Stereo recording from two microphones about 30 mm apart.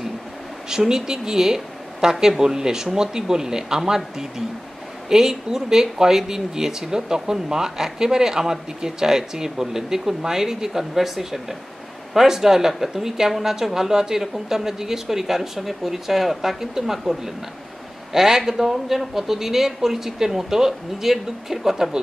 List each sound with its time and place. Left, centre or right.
0.7 s a woman's voice: right